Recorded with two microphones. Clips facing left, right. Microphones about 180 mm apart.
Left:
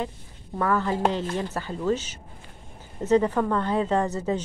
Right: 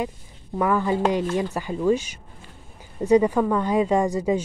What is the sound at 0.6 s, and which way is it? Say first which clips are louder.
Speech: right 3 dB; 15° right (ahead or behind).